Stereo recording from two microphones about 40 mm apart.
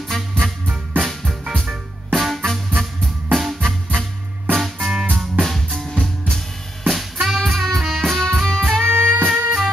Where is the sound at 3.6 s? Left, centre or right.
Centre.